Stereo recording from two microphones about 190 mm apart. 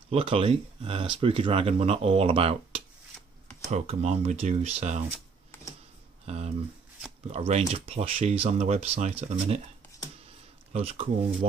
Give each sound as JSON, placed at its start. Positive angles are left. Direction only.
{"t": 0.1, "sound": "speech", "side_deg": -30}
{"t": 6.2, "sound": "speech", "side_deg": -35}
{"t": 10.7, "sound": "speech", "side_deg": -30}